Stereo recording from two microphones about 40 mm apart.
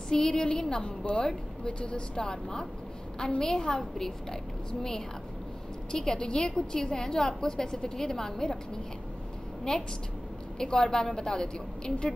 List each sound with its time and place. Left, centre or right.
0.1 s a woman's voice: centre
5.9 s a woman's voice: centre